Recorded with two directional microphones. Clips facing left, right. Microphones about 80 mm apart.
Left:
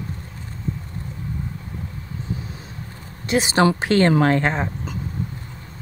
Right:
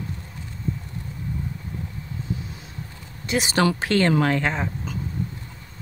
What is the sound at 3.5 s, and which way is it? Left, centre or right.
Speech, left.